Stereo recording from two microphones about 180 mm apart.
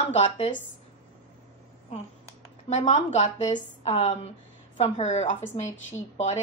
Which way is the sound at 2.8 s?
40° left (ahead or behind).